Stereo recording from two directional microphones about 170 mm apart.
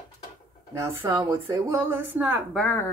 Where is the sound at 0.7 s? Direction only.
15° right (ahead or behind).